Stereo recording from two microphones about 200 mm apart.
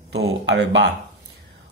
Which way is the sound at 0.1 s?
60° right (ahead or behind).